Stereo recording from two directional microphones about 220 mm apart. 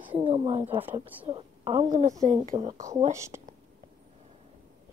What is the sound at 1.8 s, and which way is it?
A woman's voice, 35° right (ahead or behind).